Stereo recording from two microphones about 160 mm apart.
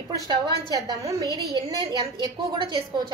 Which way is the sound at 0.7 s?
20° right (ahead or behind).